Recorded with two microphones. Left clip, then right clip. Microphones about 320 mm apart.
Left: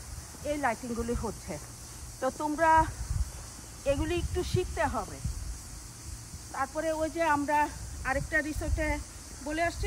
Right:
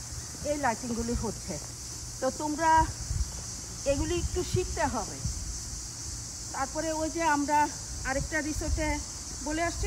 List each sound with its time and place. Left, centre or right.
0.5 s speech: centre
2.1 s speech: centre
6.5 s speech: centre